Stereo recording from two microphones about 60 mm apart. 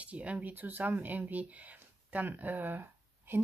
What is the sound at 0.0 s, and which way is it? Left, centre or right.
A woman's voice, right.